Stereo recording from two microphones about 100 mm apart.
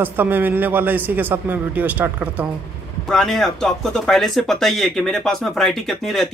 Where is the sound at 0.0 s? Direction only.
20° right (ahead or behind).